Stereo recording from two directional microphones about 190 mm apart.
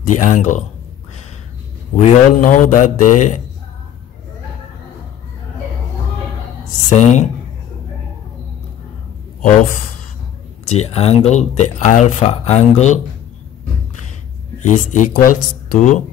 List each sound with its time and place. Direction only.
0.0 s speech: 40° left (ahead or behind)
2.0 s speech: 45° left (ahead or behind)
6.7 s speech: 40° left (ahead or behind)
10.6 s speech: 35° left (ahead or behind)
14.6 s speech: 40° left (ahead or behind)